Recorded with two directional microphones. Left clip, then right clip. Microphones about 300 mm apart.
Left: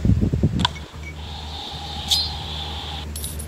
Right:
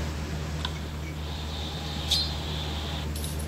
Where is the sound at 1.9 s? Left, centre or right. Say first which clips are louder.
Left 6 dB; left.